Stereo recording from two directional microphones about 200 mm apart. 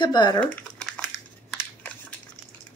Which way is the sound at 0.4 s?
5° left (ahead or behind).